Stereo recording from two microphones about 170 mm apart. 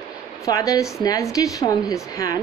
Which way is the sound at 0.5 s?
20° left (ahead or behind).